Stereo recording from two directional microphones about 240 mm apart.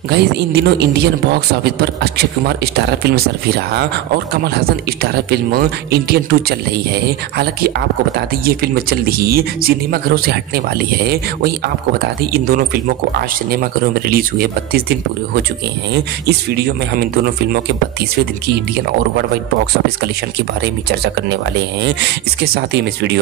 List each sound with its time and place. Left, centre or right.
0.1 s speech: right
15.9 s speech: right
22.4 s speech: right